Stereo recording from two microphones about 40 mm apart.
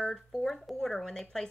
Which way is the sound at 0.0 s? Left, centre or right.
Centre.